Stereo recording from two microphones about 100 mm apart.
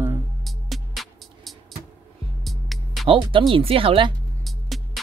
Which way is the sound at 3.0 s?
60° right (ahead or behind).